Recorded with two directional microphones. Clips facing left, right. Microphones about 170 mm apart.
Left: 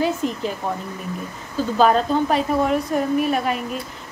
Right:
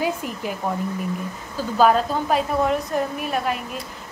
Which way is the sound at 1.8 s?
5° right (ahead or behind).